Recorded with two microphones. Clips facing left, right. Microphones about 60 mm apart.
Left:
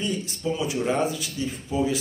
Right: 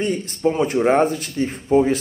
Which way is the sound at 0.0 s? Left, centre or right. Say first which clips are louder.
Right 8 dB; right.